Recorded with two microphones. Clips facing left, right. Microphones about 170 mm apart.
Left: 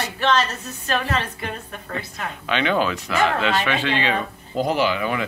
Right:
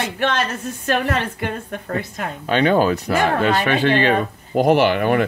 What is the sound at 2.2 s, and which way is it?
Speech, 45° right (ahead or behind).